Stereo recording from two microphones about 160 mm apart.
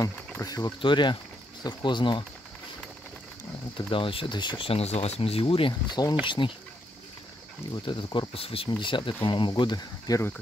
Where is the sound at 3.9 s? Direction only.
35° left (ahead or behind).